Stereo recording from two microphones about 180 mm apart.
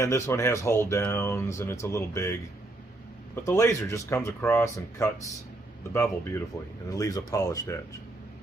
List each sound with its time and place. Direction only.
0.0 s speech: 15° left (ahead or behind)
3.4 s speech: 15° left (ahead or behind)